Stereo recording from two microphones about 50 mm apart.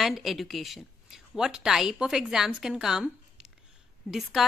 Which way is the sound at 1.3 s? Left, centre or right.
Centre.